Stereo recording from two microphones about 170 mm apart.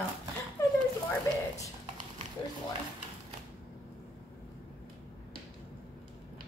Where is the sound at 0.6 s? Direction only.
15° left (ahead or behind).